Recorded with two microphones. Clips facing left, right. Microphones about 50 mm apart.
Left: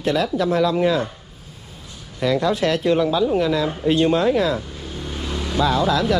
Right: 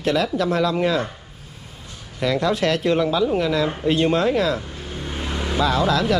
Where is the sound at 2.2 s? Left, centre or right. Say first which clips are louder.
Left 1 dB; right.